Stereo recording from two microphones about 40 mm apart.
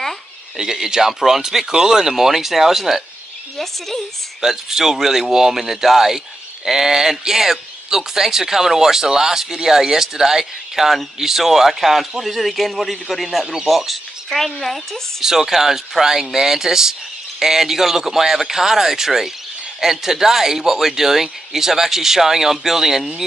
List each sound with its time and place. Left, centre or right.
0.6 s speech: centre
4.4 s a man's voice: centre
15.2 s speech: centre